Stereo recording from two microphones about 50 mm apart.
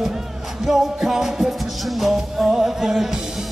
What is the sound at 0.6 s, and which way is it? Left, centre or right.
Music, centre.